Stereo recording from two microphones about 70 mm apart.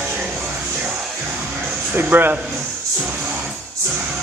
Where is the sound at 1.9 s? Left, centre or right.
Right.